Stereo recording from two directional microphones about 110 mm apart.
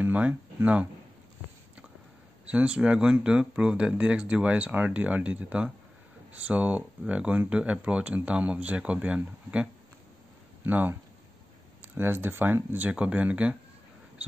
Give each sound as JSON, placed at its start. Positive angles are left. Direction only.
{"t": 0.0, "sound": "speech", "side_deg": -15}
{"t": 2.4, "sound": "speech", "side_deg": -10}